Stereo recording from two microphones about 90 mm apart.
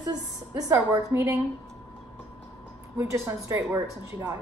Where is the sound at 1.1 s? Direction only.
30° right (ahead or behind).